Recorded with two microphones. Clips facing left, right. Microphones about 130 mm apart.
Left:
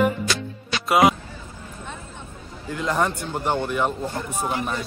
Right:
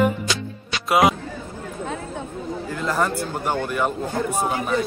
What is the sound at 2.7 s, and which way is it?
Music, centre (ahead or behind).